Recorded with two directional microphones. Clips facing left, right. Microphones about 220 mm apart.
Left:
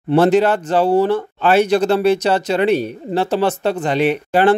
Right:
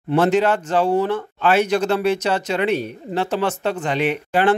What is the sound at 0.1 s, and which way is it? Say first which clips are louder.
Speech: left 4 dB; 35° left (ahead or behind).